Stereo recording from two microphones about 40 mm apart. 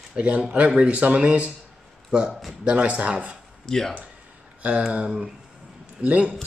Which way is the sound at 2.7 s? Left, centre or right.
Right.